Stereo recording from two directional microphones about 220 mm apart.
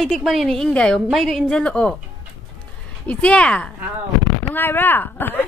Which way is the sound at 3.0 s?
5° left (ahead or behind).